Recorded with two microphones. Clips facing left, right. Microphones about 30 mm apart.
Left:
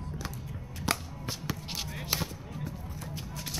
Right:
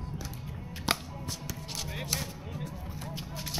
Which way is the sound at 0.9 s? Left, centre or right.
Right.